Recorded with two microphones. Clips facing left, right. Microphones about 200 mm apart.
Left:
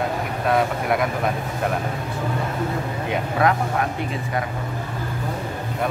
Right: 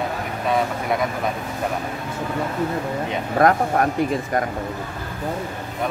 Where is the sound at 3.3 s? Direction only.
45° right (ahead or behind).